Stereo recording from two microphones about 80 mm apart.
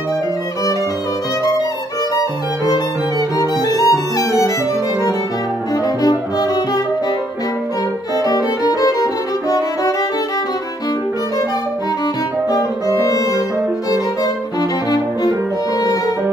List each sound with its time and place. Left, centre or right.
2.1 s violin: left
6.0 s music: left
8.2 s violin: left
12.4 s music: left
13.8 s violin: left